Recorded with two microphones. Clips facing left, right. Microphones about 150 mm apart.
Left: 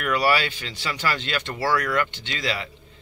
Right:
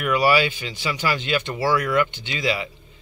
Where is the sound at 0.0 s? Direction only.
10° right (ahead or behind).